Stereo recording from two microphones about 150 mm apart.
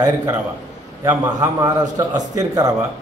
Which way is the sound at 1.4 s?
25° right (ahead or behind).